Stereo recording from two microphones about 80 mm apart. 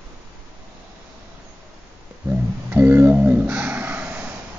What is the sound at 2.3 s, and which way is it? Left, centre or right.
Music, right.